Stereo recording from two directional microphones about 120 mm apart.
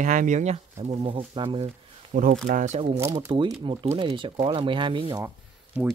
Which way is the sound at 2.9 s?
20° right (ahead or behind).